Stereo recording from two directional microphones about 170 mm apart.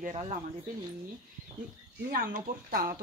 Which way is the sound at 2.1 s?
60° right (ahead or behind).